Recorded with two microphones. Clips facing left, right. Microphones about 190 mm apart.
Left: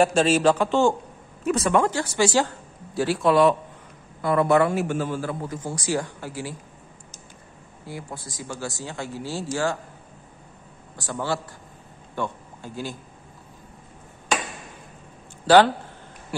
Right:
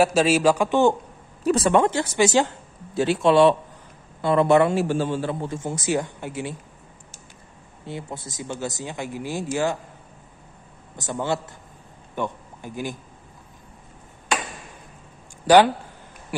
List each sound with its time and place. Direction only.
0.0 s a man's voice: 5° right (ahead or behind)
1.4 s a man's voice: 35° right (ahead or behind)
7.8 s a man's voice: 25° right (ahead or behind)
11.0 s a man's voice: 20° right (ahead or behind)
15.4 s speech: 15° right (ahead or behind)